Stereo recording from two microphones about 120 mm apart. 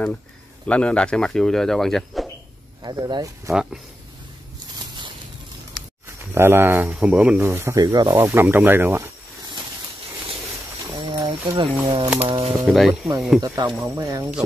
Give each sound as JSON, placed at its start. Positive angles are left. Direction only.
{"t": 0.7, "sound": "speech", "side_deg": 10}
{"t": 2.8, "sound": "speech", "side_deg": -35}
{"t": 6.3, "sound": "speech", "side_deg": -20}
{"t": 7.4, "sound": "speech", "side_deg": -20}
{"t": 7.8, "sound": "speech", "side_deg": -35}
{"t": 11.0, "sound": "a sound", "side_deg": -40}
{"t": 11.8, "sound": "speech", "side_deg": -45}
{"t": 12.6, "sound": "speech", "side_deg": 0}
{"t": 13.4, "sound": "speech", "side_deg": -30}